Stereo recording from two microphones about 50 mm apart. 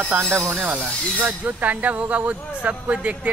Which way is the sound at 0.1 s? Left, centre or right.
Right.